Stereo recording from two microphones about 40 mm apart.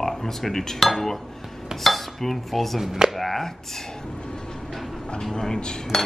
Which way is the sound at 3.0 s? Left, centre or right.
Centre.